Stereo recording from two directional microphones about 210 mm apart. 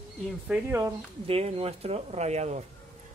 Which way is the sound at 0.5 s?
10° right (ahead or behind).